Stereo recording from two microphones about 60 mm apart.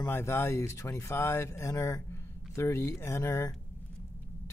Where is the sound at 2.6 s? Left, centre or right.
Left.